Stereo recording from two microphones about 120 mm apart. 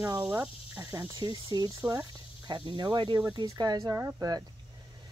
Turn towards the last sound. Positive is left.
turn(degrees=-30)  # may be behind; listen again after turning